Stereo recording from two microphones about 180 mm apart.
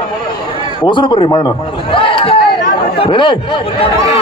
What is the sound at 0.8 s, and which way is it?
A man's voice, 25° left (ahead or behind).